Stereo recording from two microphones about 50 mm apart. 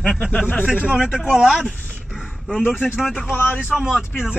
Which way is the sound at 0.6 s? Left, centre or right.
Centre.